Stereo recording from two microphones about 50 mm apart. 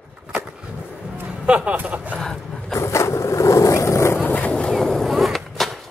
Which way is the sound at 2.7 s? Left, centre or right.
Left.